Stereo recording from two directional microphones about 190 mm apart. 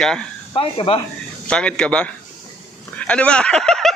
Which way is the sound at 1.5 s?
5° left (ahead or behind).